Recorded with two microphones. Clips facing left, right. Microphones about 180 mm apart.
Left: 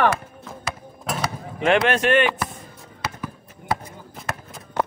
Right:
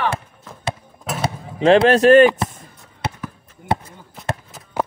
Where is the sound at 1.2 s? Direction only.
30° right (ahead or behind).